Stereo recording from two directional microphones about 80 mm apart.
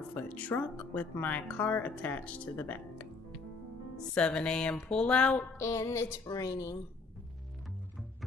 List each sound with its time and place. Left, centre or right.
0.1 s speech: centre
4.1 s speech: centre
5.6 s music: left
6.2 s speech: left